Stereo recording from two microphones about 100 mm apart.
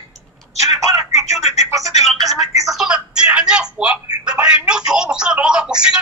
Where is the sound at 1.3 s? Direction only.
90° left.